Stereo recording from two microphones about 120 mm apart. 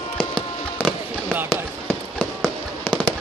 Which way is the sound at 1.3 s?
15° right (ahead or behind).